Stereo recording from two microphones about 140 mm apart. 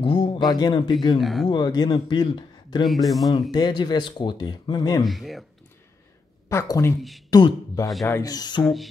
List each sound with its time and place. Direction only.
0.0 s a sound: 40° left (ahead or behind)
0.5 s speech: 30° left (ahead or behind)
1.2 s speech: centre (ahead or behind)
1.5 s speech: 30° left (ahead or behind)
2.9 s speech: centre (ahead or behind)
3.5 s speech: 30° left (ahead or behind)
5.0 s speech: centre (ahead or behind)
6.5 s speech: 20° left (ahead or behind)
7.0 s speech: centre (ahead or behind)
7.2 s speech: 30° left (ahead or behind)